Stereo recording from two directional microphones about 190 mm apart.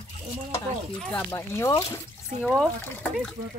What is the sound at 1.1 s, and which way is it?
Speech, 10° left (ahead or behind).